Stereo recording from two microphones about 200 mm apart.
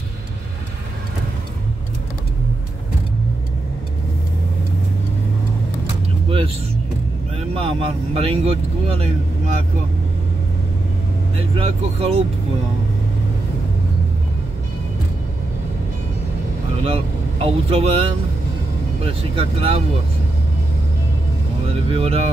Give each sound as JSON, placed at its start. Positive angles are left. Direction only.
{"t": 6.2, "sound": "music", "side_deg": -25}
{"t": 7.5, "sound": "speech", "side_deg": -30}
{"t": 11.3, "sound": "speech", "side_deg": -30}
{"t": 16.8, "sound": "speech", "side_deg": -30}
{"t": 19.3, "sound": "speech", "side_deg": -30}
{"t": 21.9, "sound": "speech", "side_deg": -30}